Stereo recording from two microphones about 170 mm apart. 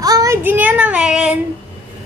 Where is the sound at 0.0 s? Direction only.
20° right (ahead or behind); by 1.3 s 5° right (ahead or behind).